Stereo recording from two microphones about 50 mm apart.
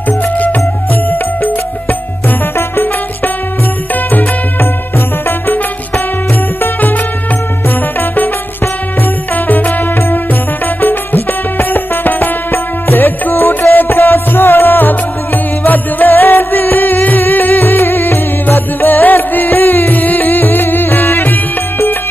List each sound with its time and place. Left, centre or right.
2.5 s music: left
4.1 s music: left
6.6 s music: left
9.5 s music: left
10.8 s music: left